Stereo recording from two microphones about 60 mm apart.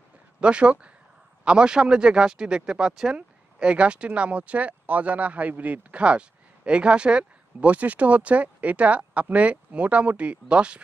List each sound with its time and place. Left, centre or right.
0.4 s speech: centre